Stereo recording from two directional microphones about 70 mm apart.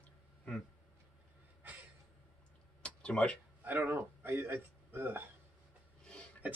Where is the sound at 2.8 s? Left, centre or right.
Centre.